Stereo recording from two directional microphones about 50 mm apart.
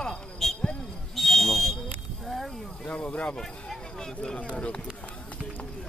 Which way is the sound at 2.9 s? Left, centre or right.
Left.